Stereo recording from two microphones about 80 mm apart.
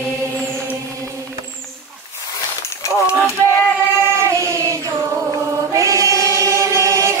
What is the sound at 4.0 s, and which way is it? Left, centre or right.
Choir, right.